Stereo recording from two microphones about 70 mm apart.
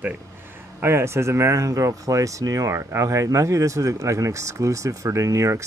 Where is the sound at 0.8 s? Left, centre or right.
Right.